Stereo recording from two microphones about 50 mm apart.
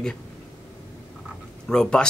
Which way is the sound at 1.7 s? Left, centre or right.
Centre.